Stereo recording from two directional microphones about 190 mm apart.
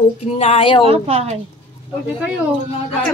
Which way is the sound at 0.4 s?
30° left (ahead or behind).